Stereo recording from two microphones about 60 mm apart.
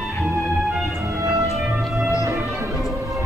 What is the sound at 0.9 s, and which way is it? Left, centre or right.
Music, right.